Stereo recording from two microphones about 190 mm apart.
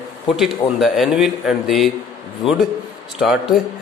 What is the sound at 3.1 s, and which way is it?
Speech, centre (ahead or behind).